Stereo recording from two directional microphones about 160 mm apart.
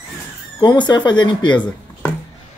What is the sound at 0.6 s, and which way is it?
Speech, 30° left (ahead or behind).